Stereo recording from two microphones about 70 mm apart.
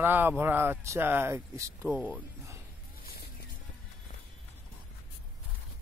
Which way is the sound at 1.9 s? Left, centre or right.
Right.